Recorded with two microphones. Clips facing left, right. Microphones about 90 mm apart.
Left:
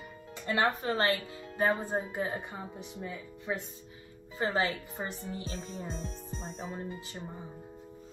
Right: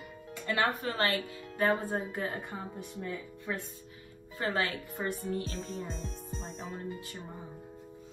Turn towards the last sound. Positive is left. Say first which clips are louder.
# left 1 dB
turn(degrees=0)  # may be behind; listen again after turning